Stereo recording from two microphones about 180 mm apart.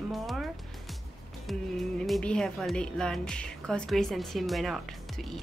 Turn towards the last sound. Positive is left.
turn(degrees=0)  # may be behind; listen again after turning